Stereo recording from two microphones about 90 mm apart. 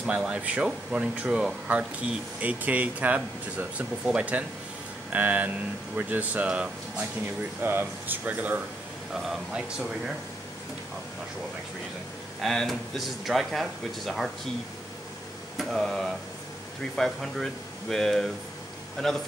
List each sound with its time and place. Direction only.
0.0 s speech: 10° right (ahead or behind)
9.1 s speech: 5° right (ahead or behind)
12.4 s speech: centre (ahead or behind)
15.5 s a sound: 5° left (ahead or behind)
16.9 s speech: 5° left (ahead or behind)